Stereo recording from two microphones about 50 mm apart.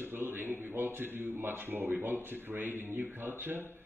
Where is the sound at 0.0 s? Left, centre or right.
Right.